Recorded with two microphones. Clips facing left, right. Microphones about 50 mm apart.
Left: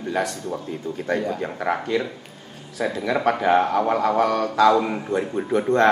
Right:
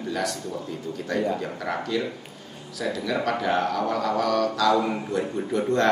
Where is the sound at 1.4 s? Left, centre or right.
Left.